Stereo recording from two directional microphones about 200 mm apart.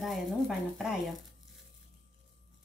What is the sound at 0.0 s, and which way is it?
Speech, centre (ahead or behind).